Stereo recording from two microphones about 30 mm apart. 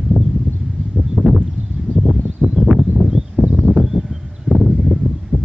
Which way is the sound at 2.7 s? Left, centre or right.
Centre.